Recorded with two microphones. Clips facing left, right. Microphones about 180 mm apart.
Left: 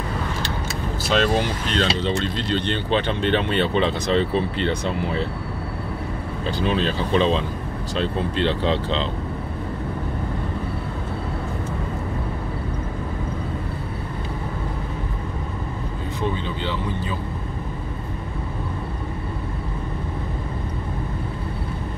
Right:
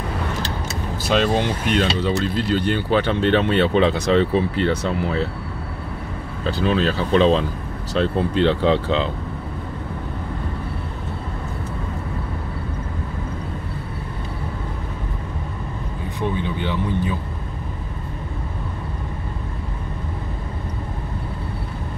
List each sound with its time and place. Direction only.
1.1 s speech: 15° right (ahead or behind)
6.6 s speech: centre (ahead or behind)
8.4 s speech: 10° right (ahead or behind)
16.2 s speech: 15° right (ahead or behind)